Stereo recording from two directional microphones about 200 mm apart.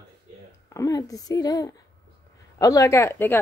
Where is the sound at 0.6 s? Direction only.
15° left (ahead or behind).